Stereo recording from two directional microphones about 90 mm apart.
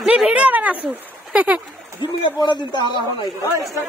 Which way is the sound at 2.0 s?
60° left (ahead or behind).